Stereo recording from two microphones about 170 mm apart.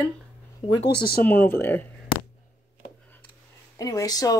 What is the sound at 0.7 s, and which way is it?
Speech, 70° left (ahead or behind).